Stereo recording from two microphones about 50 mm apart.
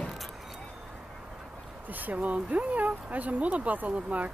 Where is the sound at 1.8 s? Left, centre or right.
Right.